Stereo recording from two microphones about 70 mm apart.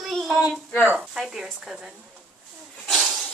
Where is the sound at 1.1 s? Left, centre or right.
Centre.